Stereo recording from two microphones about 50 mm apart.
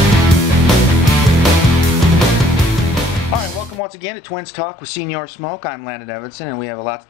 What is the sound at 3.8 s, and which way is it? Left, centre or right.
Speech, centre.